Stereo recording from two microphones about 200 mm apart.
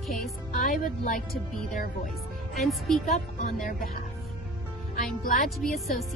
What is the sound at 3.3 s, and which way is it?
Speech, 45° left (ahead or behind).